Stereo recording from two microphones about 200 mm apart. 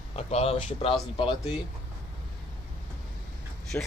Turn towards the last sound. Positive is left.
turn(degrees=10)  # may be behind; listen again after turning